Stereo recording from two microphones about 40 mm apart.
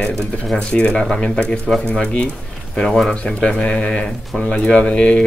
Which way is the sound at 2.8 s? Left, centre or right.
Centre.